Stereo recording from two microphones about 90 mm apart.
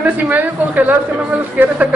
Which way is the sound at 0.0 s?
20° right (ahead or behind).